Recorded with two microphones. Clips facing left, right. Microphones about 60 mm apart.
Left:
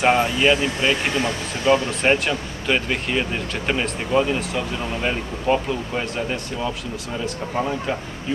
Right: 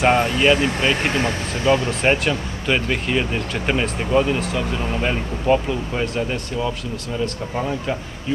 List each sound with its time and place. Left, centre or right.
0.0 s speech: centre
1.1 s speech: right
1.9 s speech: centre